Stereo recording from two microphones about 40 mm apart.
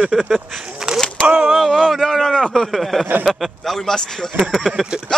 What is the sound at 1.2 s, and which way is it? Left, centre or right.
Speech, right.